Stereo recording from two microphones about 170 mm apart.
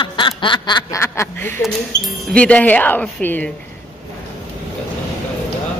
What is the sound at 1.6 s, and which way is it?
Speech, centre (ahead or behind).